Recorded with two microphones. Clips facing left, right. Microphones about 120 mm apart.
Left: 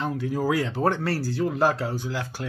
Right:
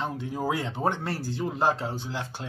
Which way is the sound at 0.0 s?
25° right (ahead or behind).